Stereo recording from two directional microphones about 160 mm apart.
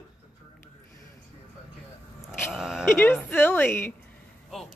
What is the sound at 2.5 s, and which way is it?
Sheep, 5° right (ahead or behind).